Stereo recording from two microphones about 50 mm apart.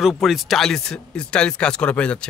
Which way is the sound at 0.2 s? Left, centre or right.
Centre.